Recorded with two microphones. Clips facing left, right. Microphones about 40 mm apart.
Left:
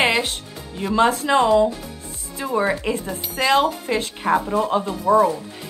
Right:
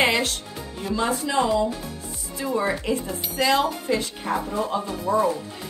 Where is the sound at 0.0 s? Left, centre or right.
Left.